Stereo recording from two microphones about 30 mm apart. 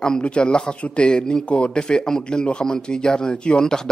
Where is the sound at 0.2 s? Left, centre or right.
Left.